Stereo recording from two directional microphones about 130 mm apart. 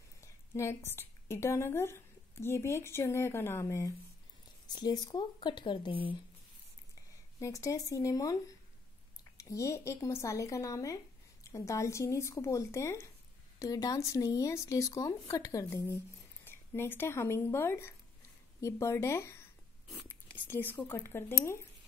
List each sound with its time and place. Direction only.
0.2 s a woman's voice: 20° left (ahead or behind)
4.6 s speech: 35° left (ahead or behind)
7.0 s speech: 25° left (ahead or behind)